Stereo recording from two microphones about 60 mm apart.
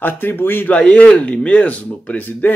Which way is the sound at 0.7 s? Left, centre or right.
Left.